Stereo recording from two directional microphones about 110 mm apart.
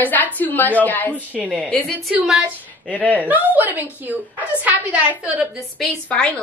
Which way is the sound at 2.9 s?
15° left (ahead or behind).